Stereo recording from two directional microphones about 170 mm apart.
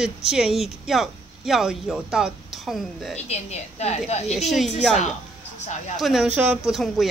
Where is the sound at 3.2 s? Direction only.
40° left (ahead or behind).